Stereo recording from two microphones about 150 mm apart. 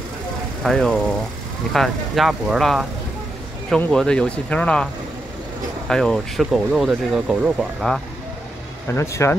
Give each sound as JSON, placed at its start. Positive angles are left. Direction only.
{"t": 0.7, "sound": "speech", "side_deg": 5}
{"t": 5.9, "sound": "speech", "side_deg": 5}
{"t": 8.9, "sound": "speech", "side_deg": 20}